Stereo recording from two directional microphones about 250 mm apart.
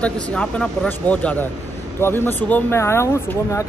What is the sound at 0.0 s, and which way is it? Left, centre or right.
A man's voice, centre.